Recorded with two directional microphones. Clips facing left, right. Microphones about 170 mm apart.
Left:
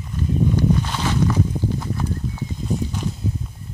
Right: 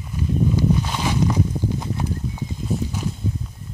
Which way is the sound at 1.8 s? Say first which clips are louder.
Even; 20° right (ahead or behind).